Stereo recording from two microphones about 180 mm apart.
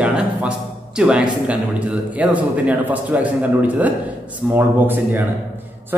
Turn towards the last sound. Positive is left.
turn(degrees=-10)  # may be behind; listen again after turning